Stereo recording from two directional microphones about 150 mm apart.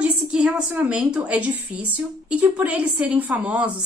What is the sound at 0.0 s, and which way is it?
A woman's voice, 5° right (ahead or behind).